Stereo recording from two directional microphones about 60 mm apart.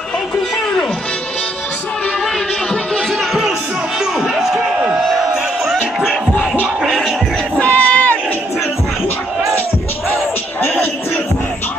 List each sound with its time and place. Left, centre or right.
4.2 s crowd: centre
6.8 s music: centre
7.5 s crowd: left